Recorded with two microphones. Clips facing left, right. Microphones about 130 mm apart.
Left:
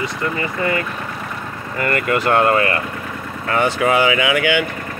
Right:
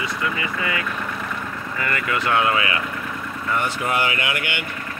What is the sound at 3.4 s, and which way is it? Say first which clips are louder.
Speech: left 7 dB; 90° left.